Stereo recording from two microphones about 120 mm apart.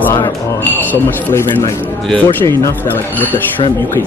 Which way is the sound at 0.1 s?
20° left (ahead or behind).